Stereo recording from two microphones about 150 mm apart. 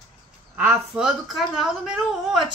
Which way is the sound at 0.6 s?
10° right (ahead or behind).